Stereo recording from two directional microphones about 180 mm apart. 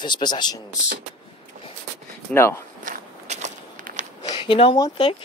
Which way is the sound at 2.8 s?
40° right (ahead or behind).